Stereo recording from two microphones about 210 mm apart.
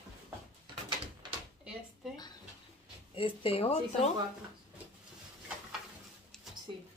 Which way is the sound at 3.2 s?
25° left (ahead or behind).